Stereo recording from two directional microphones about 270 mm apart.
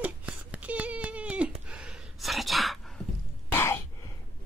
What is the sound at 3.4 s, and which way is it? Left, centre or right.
Cough, centre.